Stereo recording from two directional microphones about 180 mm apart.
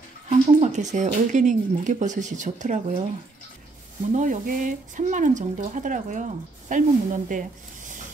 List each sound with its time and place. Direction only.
0.3 s speech: 40° right (ahead or behind)
4.1 s speech: 45° right (ahead or behind)